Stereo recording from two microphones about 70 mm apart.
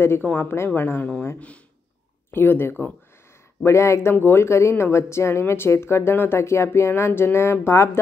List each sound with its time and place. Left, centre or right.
0.0 s speech: left
2.3 s speech: left
3.6 s speech: left
4.1 s speech: left